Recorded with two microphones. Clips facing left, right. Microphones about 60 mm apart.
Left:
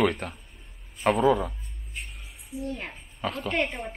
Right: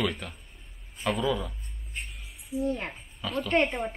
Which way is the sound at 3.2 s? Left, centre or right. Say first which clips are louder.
Left 3 dB; left.